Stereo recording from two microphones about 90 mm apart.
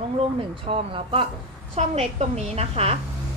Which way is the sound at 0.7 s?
80° right.